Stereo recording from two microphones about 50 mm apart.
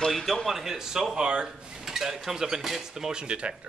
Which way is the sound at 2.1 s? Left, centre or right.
Centre.